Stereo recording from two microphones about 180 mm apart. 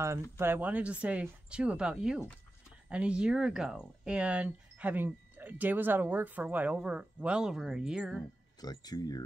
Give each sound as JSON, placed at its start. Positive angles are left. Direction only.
{"t": 0.0, "sound": "speech", "side_deg": -15}
{"t": 8.5, "sound": "speech", "side_deg": 20}